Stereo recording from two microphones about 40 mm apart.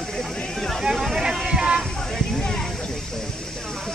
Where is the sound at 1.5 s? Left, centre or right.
Right.